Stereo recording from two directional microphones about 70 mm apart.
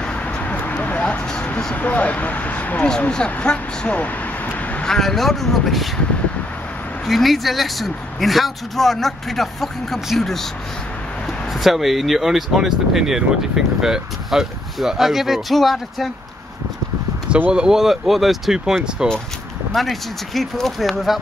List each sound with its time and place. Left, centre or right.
0.0 s a sound: centre
1.8 s speech: left
4.8 s speech: centre
7.1 s speech: centre
11.5 s speech: centre
17.5 s speech: centre